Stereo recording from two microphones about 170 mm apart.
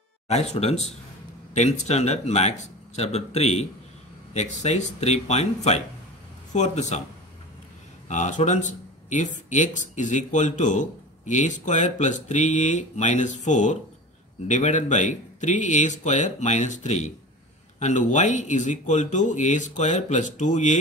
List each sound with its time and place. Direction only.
0.3 s speech: 40° left (ahead or behind)
8.1 s speech: 45° left (ahead or behind)